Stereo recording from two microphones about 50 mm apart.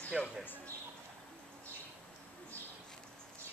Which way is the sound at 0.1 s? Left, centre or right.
Centre.